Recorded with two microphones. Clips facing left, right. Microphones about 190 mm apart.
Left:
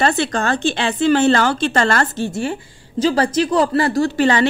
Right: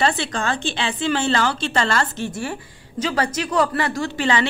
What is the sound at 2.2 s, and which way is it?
A woman's voice, 30° left (ahead or behind).